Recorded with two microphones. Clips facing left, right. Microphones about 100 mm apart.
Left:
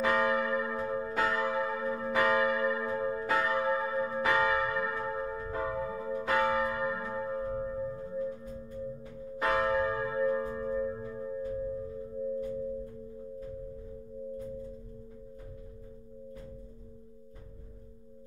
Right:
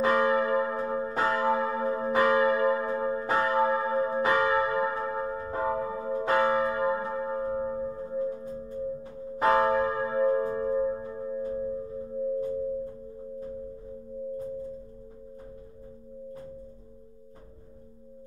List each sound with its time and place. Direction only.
0.0 s church bell: 30° right (ahead or behind)